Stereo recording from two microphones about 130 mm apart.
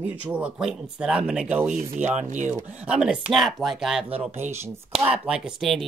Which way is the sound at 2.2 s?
70° right (ahead or behind).